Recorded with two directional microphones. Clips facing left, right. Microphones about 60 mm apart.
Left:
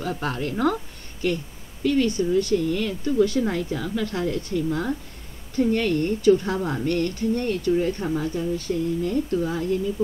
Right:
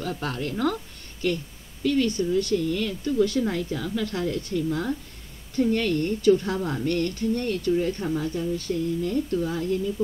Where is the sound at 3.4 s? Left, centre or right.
Left.